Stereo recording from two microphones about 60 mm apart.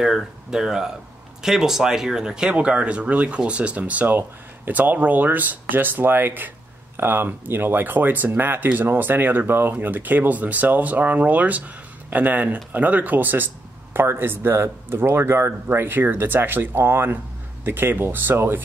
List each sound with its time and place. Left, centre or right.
0.0 s speech: centre; by 18.6 s right